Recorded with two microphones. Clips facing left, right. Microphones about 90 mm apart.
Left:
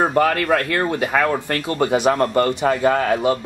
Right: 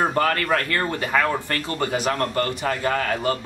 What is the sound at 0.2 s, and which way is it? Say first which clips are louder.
A man's voice: left 4 dB; 20° left (ahead or behind).